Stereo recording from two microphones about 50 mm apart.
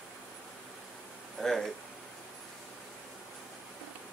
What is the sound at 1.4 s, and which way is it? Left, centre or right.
Speech, centre.